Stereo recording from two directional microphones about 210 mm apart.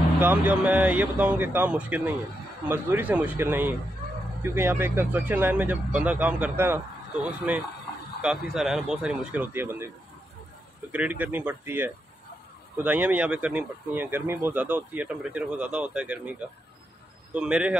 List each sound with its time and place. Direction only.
0.2 s speech: 10° right (ahead or behind)
10.9 s speech: 5° right (ahead or behind)